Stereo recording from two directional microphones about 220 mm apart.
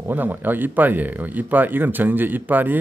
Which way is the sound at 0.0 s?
10° right (ahead or behind).